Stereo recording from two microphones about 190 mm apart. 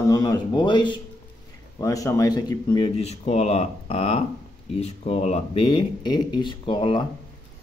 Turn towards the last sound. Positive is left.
turn(degrees=25)  # may be behind; listen again after turning